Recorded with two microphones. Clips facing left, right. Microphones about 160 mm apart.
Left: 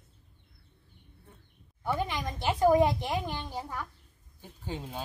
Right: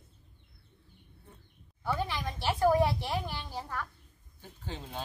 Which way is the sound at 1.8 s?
15° left (ahead or behind).